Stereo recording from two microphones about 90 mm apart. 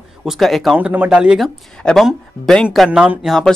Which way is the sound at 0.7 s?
20° right (ahead or behind).